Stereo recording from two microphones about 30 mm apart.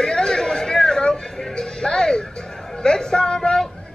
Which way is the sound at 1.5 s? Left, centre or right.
Left.